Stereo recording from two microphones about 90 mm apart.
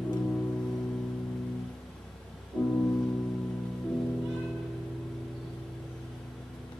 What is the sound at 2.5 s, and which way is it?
Music, 15° left (ahead or behind).